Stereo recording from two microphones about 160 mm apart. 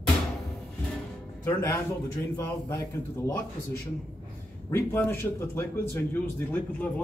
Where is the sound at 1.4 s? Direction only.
15° left (ahead or behind).